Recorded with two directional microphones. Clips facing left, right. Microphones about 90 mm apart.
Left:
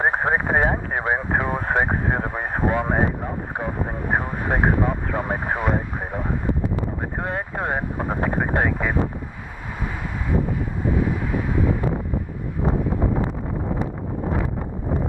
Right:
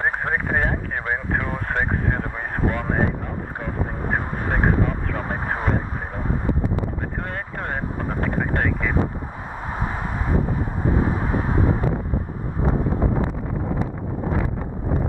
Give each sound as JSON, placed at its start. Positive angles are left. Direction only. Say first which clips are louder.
{"t": 0.0, "sound": "speech", "louder": "left 3 dB", "side_deg": 20}
{"t": 4.1, "sound": "speech", "louder": "left 3 dB", "side_deg": 20}
{"t": 7.2, "sound": "speech", "louder": "left 4 dB", "side_deg": 15}
{"t": 10.9, "sound": "vehicle", "louder": "right 1 dB", "side_deg": -35}